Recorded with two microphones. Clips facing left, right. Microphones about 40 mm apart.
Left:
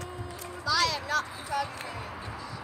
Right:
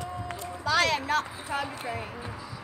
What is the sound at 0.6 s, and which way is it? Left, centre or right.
Speech, right.